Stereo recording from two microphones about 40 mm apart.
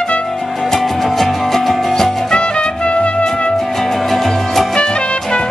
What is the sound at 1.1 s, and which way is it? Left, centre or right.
Music, centre.